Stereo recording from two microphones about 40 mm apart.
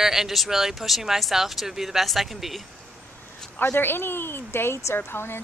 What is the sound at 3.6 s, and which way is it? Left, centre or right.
Speech, left.